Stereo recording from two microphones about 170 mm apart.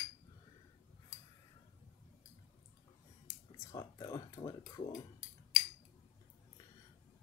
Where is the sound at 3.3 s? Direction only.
20° left (ahead or behind).